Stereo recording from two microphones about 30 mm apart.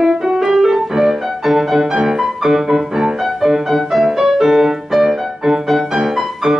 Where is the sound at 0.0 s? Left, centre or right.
Centre.